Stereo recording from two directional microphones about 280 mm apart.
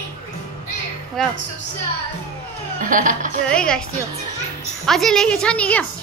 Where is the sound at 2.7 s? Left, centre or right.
Right.